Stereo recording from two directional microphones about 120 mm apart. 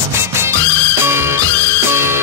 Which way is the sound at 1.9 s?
20° right (ahead or behind).